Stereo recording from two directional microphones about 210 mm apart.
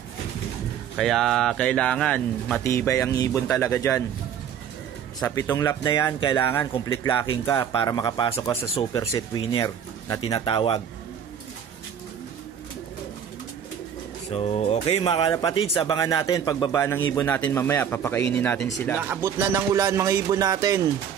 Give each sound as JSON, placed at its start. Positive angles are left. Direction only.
{"t": 0.9, "sound": "speech", "side_deg": 0}
{"t": 5.2, "sound": "speech", "side_deg": 15}
{"t": 14.3, "sound": "speech", "side_deg": 30}
{"t": 18.9, "sound": "speech", "side_deg": -10}